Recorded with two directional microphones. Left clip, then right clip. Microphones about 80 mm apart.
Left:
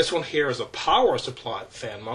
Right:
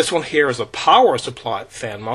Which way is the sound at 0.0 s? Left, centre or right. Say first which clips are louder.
Right 6 dB; right.